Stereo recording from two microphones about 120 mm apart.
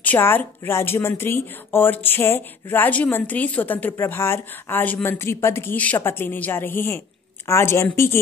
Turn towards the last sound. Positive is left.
turn(degrees=20)  # may be behind; listen again after turning